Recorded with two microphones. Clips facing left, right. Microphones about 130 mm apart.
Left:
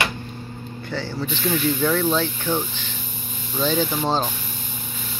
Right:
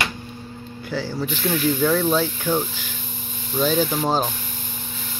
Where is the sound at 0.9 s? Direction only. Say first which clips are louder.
Right 2 dB; 10° right (ahead or behind).